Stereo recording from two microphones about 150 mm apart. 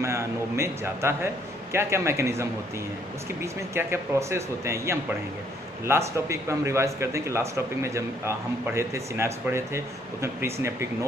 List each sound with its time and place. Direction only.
0.0 s a man's voice: 20° right (ahead or behind)
3.7 s a man's voice: 15° right (ahead or behind)